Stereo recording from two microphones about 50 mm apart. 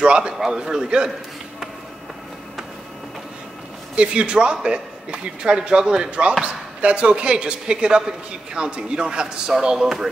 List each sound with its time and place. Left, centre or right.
0.0 s a man's voice: centre
3.9 s speech: right